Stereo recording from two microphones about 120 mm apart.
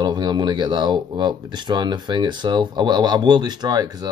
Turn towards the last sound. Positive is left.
turn(degrees=-35)  # may be behind; listen again after turning